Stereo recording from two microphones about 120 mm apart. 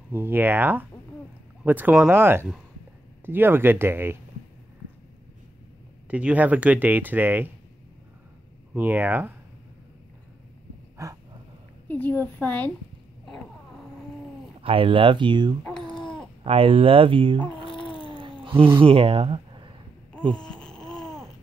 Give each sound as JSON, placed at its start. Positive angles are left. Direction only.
{"t": 0.1, "sound": "speech", "side_deg": -15}
{"t": 6.0, "sound": "speech", "side_deg": -10}
{"t": 8.7, "sound": "speech", "side_deg": -15}
{"t": 11.0, "sound": "a sound", "side_deg": -25}
{"t": 11.9, "sound": "a woman's voice", "side_deg": 15}
{"t": 14.6, "sound": "speech", "side_deg": -50}
{"t": 15.6, "sound": "babbling", "side_deg": 5}
{"t": 16.4, "sound": "speech", "side_deg": -50}
{"t": 17.6, "sound": "cat", "side_deg": 5}
{"t": 18.0, "sound": "cat", "side_deg": -45}
{"t": 18.8, "sound": "speech", "side_deg": -50}
{"t": 20.3, "sound": "a sound", "side_deg": 5}